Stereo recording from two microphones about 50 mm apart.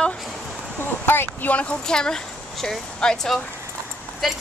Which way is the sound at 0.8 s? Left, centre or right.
Left.